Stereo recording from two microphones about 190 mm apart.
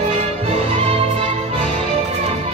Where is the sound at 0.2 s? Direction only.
30° right (ahead or behind).